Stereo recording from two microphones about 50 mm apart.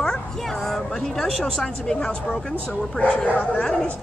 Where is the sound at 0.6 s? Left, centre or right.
Centre.